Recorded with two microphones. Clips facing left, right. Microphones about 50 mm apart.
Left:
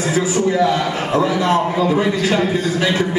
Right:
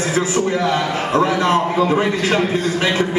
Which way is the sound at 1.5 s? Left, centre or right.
Right.